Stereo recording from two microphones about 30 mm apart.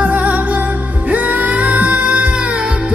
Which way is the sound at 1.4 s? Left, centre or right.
Right.